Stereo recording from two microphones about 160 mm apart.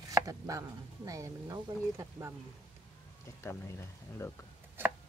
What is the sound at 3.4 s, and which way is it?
Speech, 15° left (ahead or behind).